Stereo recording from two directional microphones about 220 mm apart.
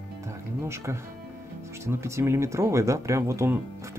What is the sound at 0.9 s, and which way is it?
Speech, 10° right (ahead or behind).